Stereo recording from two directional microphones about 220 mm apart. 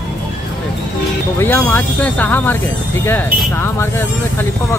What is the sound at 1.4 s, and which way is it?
Speech, 10° left (ahead or behind).